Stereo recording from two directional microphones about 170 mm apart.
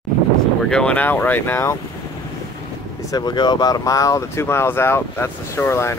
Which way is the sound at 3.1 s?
25° left (ahead or behind).